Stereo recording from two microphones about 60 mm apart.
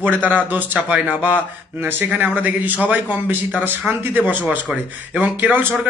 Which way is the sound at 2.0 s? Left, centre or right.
Right.